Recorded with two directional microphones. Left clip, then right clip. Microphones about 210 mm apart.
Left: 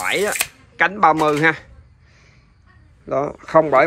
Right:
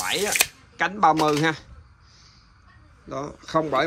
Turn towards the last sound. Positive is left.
turn(degrees=-5)  # may be behind; listen again after turning